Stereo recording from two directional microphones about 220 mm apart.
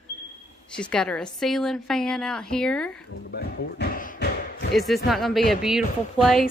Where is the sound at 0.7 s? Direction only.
5° left (ahead or behind).